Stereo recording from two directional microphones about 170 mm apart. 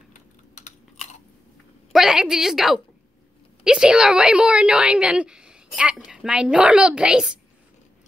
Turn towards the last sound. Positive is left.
turn(degrees=-5)  # may be behind; listen again after turning